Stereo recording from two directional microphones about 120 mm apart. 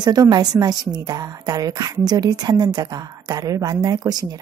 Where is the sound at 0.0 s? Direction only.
35° right (ahead or behind).